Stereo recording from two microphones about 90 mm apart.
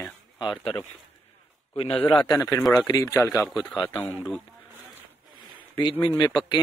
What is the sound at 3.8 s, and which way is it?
Speech, 20° left (ahead or behind).